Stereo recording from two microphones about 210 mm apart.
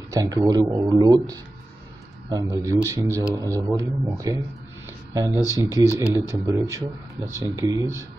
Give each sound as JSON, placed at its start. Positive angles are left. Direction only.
{"t": 0.1, "sound": "speech", "side_deg": -15}